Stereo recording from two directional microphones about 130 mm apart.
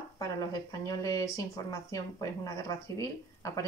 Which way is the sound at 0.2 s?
30° left (ahead or behind).